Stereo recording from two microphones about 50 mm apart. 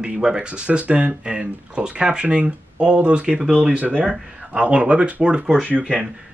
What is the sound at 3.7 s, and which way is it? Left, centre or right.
Speech, right.